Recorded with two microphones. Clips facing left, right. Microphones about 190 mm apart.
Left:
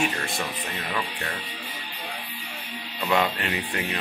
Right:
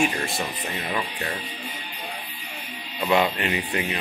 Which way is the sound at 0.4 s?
20° right (ahead or behind).